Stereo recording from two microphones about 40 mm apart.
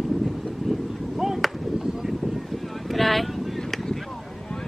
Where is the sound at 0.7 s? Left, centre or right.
Centre.